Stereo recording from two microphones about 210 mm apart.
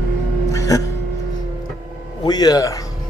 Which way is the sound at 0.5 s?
15° left (ahead or behind).